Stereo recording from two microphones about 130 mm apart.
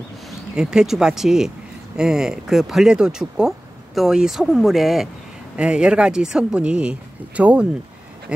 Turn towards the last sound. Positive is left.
turn(degrees=-10)  # may be behind; listen again after turning